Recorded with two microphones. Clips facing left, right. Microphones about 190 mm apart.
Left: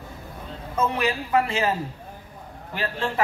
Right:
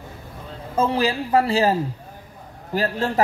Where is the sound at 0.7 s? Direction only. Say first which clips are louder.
Right 4 dB; 30° right (ahead or behind).